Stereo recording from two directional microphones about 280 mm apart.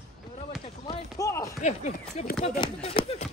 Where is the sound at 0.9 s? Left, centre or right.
Centre.